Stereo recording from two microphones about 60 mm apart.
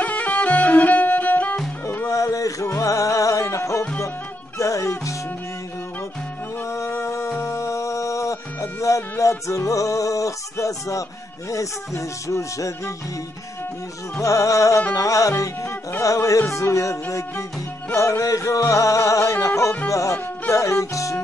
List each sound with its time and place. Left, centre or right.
0.0 s music: left
2.0 s a sound: left
2.8 s music: left
6.6 s music: left
14.2 s music: left
18.2 s music: left